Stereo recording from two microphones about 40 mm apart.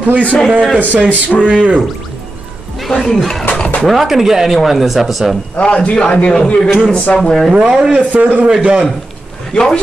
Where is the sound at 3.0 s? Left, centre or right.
Centre.